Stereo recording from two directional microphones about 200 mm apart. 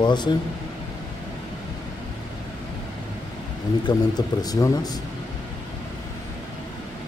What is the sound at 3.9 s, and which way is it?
A man's voice, 20° left (ahead or behind).